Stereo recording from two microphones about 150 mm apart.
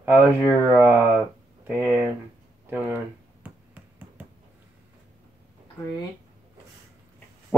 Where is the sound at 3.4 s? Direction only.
10° right (ahead or behind).